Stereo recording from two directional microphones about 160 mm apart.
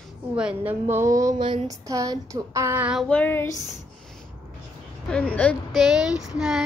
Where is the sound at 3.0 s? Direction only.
10° left (ahead or behind).